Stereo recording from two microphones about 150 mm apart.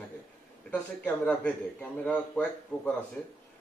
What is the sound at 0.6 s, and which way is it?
Speech, 10° left (ahead or behind).